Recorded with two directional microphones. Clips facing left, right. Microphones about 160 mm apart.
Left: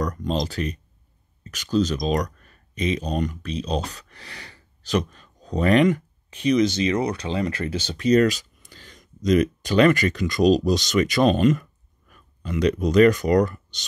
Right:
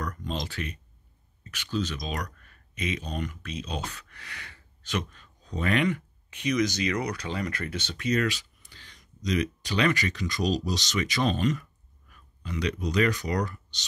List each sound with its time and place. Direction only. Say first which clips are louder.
0.0 s speech: left 8 dB; 40° left (ahead or behind)